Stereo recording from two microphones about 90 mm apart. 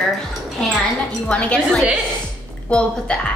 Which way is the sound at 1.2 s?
15° left (ahead or behind).